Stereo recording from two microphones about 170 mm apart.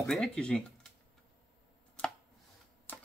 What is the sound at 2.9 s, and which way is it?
Typewriter, 10° left (ahead or behind).